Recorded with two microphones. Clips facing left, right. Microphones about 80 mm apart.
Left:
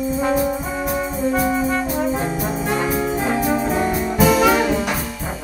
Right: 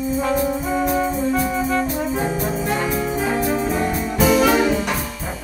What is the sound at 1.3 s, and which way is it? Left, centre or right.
Brass instrument, centre.